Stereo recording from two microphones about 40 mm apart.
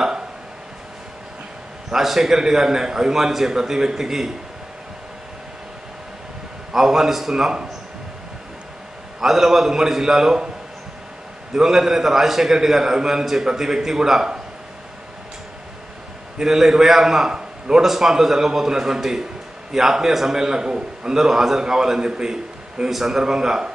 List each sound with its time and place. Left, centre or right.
1.9 s a man's voice: centre
6.7 s a man's voice: centre
9.2 s a man's voice: centre
11.5 s a man's voice: centre
16.4 s a man's voice: centre
17.3 s a sound: right
17.8 s a man's voice: centre
21.2 s a man's voice: centre